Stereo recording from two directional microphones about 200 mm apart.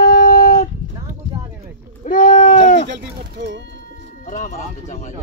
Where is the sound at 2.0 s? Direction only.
40° left (ahead or behind).